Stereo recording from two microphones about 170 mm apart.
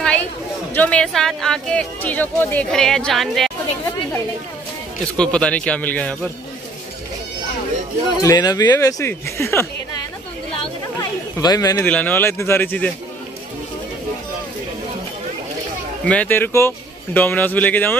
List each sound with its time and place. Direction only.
0.0 s chatter: 5° left (ahead or behind)
0.7 s speech: 5° left (ahead or behind)
5.1 s a man's voice: 5° left (ahead or behind)
8.2 s a man's voice: 20° left (ahead or behind)
11.0 s a sound: 20° left (ahead or behind)
11.8 s a man's voice: 10° left (ahead or behind)
16.1 s a man's voice: 10° left (ahead or behind)